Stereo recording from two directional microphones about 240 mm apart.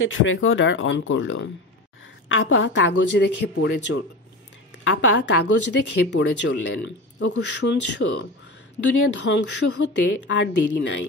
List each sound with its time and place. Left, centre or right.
0.0 s speech: left